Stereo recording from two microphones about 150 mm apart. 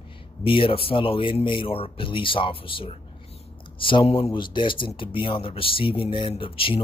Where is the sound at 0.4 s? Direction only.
35° left (ahead or behind).